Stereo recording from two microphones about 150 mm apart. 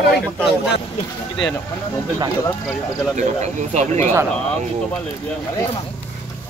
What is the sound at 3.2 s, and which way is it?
Speech, 50° right (ahead or behind).